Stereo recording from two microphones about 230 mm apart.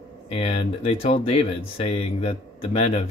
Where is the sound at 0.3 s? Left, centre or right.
Left.